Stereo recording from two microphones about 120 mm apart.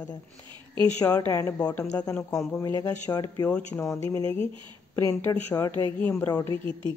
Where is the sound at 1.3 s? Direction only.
25° left (ahead or behind).